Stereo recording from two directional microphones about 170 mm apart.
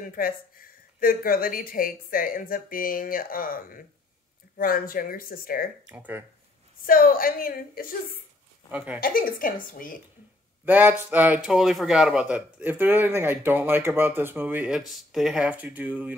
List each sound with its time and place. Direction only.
0.0 s speech: 55° left (ahead or behind)
5.9 s a man's voice: 10° right (ahead or behind)
6.8 s speech: 55° left (ahead or behind)
8.7 s a man's voice: 10° right (ahead or behind)
9.0 s speech: 55° left (ahead or behind)
10.6 s a man's voice: 10° right (ahead or behind)